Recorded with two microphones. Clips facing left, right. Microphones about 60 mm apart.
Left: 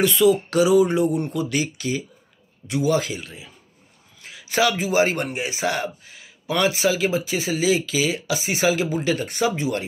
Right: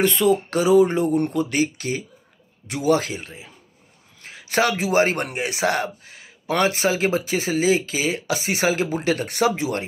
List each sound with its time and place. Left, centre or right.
0.0 s speech: right
2.7 s speech: right
4.2 s a sound: right
4.9 s a man's voice: right